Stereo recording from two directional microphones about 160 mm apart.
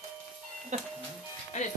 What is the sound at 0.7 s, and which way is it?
Speech, 50° right (ahead or behind).